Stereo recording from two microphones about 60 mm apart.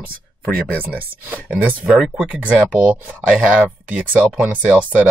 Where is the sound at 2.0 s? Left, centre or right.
Centre.